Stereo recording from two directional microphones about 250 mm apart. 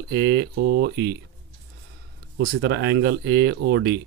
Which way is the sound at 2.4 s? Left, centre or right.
Right.